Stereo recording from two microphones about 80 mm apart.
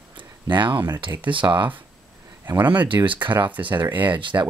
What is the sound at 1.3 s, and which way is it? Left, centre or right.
Speech, right.